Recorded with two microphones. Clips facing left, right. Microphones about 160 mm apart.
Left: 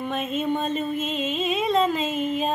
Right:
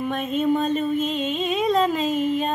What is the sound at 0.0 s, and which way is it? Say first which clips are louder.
Female singing: right 3 dB; centre (ahead or behind).